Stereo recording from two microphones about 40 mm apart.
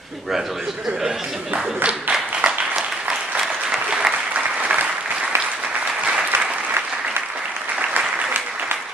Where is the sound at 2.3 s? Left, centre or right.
Right.